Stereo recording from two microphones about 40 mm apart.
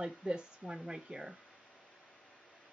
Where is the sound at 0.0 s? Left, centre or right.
Right.